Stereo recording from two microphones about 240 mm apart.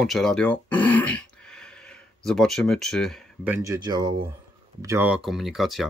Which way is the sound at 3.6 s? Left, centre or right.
Centre.